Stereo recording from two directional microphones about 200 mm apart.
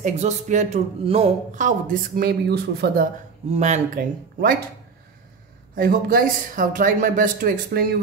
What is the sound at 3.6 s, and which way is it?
Speech, 40° right (ahead or behind).